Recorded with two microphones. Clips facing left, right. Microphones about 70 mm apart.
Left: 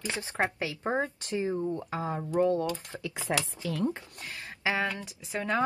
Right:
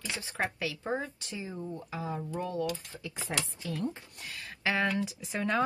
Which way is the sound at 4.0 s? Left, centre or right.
Left.